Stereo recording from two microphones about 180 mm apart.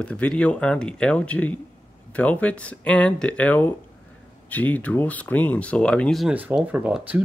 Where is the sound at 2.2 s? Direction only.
10° left (ahead or behind).